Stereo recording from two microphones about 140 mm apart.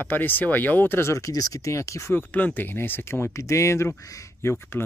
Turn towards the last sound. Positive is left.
turn(degrees=15)  # may be behind; listen again after turning